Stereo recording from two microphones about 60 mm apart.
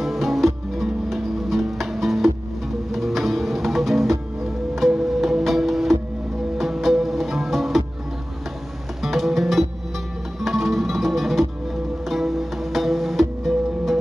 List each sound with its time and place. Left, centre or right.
0.0 s music: centre
9.0 s music: centre